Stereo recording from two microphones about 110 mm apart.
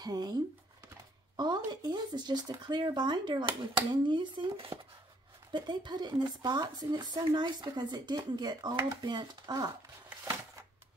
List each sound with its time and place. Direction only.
0.0 s speech: 35° right (ahead or behind)